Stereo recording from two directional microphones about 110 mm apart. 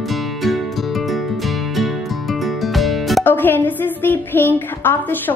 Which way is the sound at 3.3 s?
15° left (ahead or behind).